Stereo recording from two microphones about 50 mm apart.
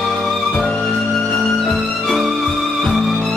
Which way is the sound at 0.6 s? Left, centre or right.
Centre.